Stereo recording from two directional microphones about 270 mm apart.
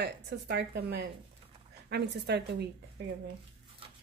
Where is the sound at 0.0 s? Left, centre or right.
Right.